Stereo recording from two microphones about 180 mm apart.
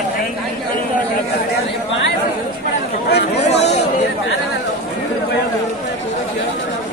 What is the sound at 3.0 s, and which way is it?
Chatter, 65° left (ahead or behind).